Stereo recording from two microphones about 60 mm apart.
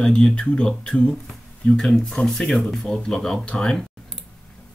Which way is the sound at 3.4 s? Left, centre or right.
Centre.